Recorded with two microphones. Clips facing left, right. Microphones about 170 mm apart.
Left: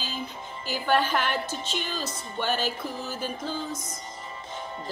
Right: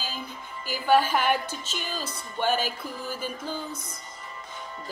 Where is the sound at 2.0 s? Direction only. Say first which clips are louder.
Right 6 dB; 50° right (ahead or behind).